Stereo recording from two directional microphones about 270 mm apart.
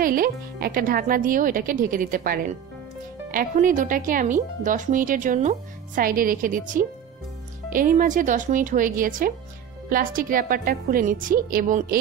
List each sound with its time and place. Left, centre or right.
0.0 s speech: right